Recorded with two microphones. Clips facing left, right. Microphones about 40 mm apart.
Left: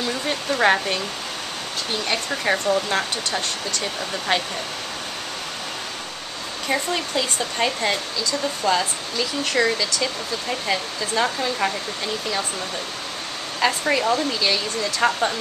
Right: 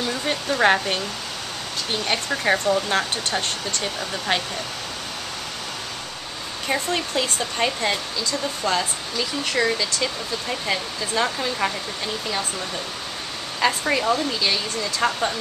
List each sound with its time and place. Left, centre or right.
0.1 s speech: centre
2.2 s speech: centre
6.7 s speech: centre
13.6 s speech: centre